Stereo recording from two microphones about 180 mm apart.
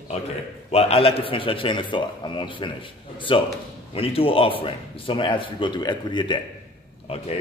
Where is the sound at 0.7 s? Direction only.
30° left (ahead or behind).